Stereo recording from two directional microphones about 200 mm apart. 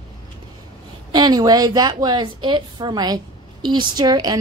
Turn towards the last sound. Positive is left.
turn(degrees=-20)  # may be behind; listen again after turning